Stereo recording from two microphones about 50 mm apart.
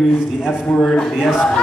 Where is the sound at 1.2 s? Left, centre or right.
Centre.